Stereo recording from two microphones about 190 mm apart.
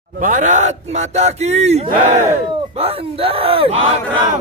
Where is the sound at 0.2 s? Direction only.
40° right (ahead or behind).